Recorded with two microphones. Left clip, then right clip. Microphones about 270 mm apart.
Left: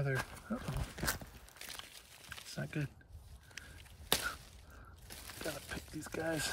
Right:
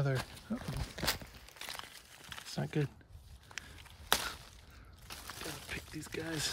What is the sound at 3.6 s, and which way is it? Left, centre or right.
Whip, centre.